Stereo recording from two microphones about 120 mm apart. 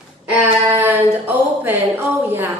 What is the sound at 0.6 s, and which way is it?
Speech, 20° right (ahead or behind).